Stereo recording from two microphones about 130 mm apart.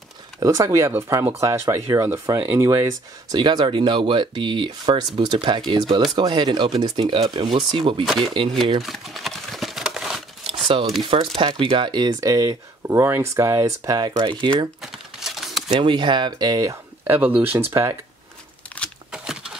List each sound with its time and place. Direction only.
0.4 s speech: 25° right (ahead or behind)
3.3 s speech: 35° right (ahead or behind)
8.8 s crumpling: centre (ahead or behind)
11.0 s speech: 45° right (ahead or behind)
14.8 s crumpling: centre (ahead or behind)
15.7 s speech: 35° right (ahead or behind)
17.0 s speech: 15° right (ahead or behind)
19.1 s a sound: 5° right (ahead or behind)